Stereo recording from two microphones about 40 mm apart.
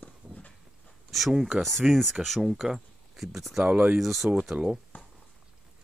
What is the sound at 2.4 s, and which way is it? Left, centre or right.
Speech, centre.